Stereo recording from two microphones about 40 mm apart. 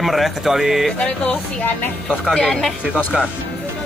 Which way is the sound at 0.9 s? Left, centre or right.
Left.